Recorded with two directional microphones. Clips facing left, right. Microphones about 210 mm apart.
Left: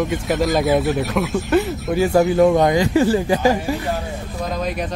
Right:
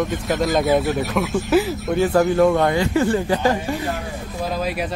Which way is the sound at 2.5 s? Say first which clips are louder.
Left 2 dB; 15° left (ahead or behind).